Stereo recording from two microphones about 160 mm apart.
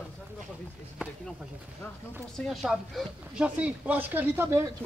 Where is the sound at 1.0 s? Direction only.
5° right (ahead or behind).